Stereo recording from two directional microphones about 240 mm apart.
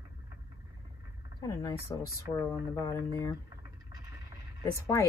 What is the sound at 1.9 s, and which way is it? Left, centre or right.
Speech, centre.